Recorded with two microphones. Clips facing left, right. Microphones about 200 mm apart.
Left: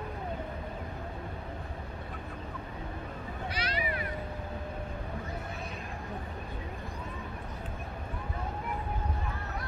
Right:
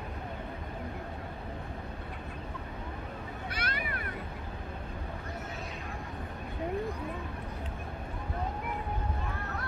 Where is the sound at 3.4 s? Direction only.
55° right (ahead or behind).